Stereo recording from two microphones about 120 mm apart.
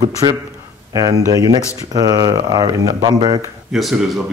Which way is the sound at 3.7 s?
Centre (ahead or behind).